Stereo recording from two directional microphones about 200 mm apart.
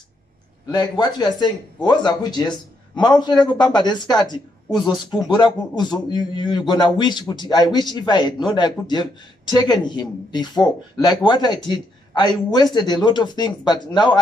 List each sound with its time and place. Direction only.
0.7 s a man's voice: 20° left (ahead or behind)